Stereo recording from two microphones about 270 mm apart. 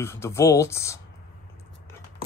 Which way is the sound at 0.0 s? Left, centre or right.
Centre.